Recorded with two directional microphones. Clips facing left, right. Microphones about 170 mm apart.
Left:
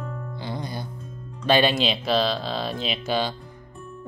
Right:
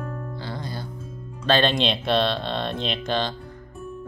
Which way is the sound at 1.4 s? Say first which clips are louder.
Left 1 dB; 10° left (ahead or behind).